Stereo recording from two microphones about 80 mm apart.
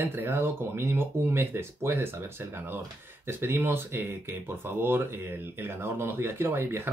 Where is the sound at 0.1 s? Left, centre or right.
Right.